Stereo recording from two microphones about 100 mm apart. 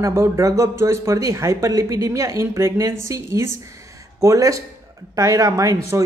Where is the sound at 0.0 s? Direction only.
30° right (ahead or behind).